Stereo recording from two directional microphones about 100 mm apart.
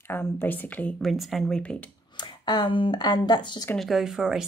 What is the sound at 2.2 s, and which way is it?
Speech, 45° left (ahead or behind).